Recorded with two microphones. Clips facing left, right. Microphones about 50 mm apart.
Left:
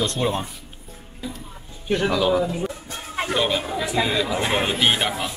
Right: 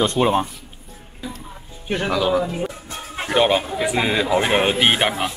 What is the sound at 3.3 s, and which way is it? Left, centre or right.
Speech, right.